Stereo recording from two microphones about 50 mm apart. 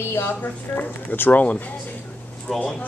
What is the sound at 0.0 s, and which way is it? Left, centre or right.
Speech, left.